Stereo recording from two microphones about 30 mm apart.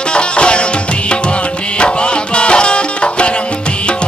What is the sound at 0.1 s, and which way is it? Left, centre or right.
Music, left.